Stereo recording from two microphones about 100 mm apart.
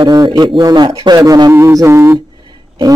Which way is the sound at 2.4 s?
45° right (ahead or behind).